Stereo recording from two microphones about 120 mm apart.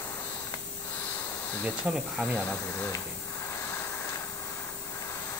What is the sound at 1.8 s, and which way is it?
Speech, 5° right (ahead or behind).